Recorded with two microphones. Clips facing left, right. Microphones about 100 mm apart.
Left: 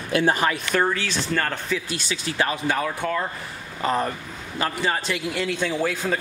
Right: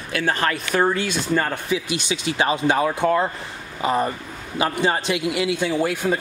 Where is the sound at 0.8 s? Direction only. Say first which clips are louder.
Right 3 dB; 15° right (ahead or behind).